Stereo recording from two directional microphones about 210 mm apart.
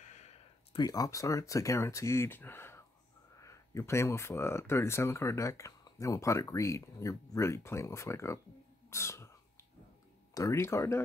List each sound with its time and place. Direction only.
0.0 s a sound: 35° left (ahead or behind)
0.7 s speech: 15° left (ahead or behind)
8.9 s sneeze: 15° left (ahead or behind)
10.3 s speech: 15° left (ahead or behind)